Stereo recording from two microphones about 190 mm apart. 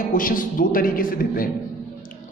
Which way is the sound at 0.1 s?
45° left (ahead or behind).